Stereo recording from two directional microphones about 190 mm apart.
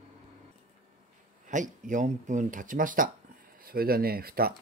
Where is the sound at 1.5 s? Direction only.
40° right (ahead or behind).